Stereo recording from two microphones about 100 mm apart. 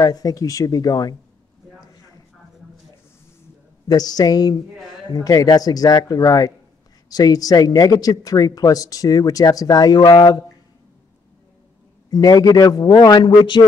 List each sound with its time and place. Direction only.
0.0 s speech: 40° left (ahead or behind)
3.8 s speech: 40° left (ahead or behind)
12.1 s speech: 40° left (ahead or behind)